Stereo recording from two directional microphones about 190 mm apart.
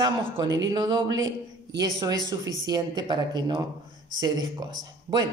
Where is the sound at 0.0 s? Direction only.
25° right (ahead or behind).